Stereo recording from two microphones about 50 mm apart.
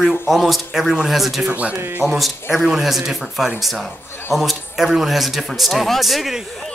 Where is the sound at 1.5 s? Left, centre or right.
Right.